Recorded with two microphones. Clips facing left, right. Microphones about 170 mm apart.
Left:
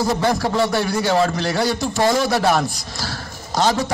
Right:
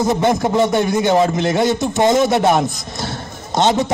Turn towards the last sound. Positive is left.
turn(degrees=-20)  # may be behind; listen again after turning